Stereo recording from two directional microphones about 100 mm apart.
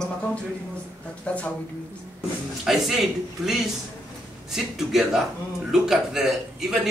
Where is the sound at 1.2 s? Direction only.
15° left (ahead or behind).